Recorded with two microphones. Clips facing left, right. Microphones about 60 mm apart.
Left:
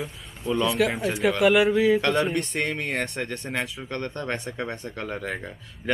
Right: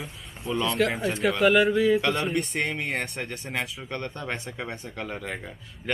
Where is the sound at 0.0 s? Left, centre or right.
Centre.